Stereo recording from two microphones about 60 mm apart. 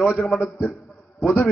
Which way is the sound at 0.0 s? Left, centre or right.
Centre.